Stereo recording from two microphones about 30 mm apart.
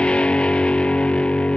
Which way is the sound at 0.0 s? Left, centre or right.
Left.